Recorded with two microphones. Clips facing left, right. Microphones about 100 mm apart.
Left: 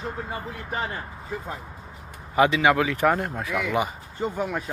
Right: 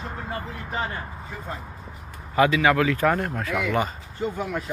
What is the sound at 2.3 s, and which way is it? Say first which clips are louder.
Speech: even; 20° left (ahead or behind).